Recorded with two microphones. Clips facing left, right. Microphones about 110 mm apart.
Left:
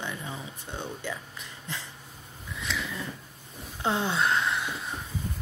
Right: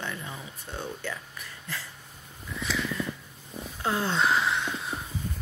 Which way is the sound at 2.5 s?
Centre (ahead or behind).